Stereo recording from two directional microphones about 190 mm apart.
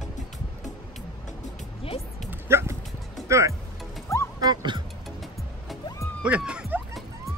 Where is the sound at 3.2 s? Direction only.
15° right (ahead or behind).